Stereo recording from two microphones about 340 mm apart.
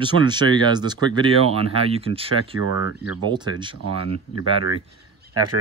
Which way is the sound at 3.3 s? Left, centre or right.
Centre.